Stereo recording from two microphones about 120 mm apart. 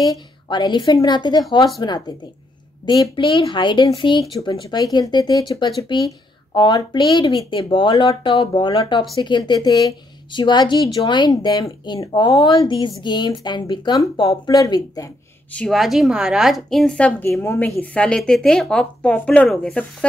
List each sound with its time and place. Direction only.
0.0 s a woman's voice: 35° left (ahead or behind)
15.5 s a woman's voice: 5° left (ahead or behind)